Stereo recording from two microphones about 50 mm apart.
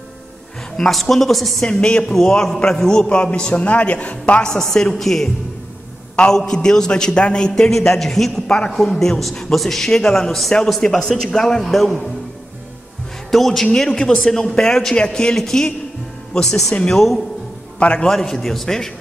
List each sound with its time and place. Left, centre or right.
0.7 s a woman's voice: centre
1.7 s speech: centre
2.1 s a man's voice: centre
3.1 s speech: left
4.4 s a man's voice: centre
13.3 s a woman's voice: centre
17.7 s a man's voice: left
18.0 s a man's voice: centre